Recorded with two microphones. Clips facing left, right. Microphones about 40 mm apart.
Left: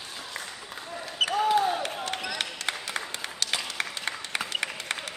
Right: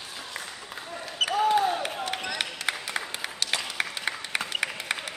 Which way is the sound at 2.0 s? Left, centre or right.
Centre.